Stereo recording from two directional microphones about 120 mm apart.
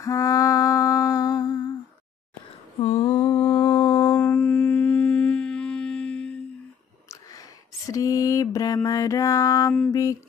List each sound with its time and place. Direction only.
0.0 s humming: 30° left (ahead or behind)
2.8 s humming: 60° left (ahead or behind)
3.2 s mantra: 35° left (ahead or behind)
4.1 s music: 10° left (ahead or behind)
7.1 s a sound: 30° left (ahead or behind)
9.8 s music: 30° left (ahead or behind)